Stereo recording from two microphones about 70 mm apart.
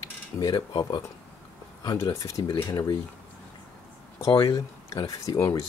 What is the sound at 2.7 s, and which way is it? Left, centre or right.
Speech, left.